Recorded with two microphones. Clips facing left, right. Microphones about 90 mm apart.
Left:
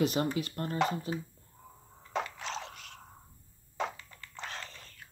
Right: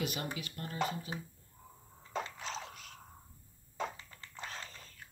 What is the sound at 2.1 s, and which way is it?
Biting, 75° left (ahead or behind).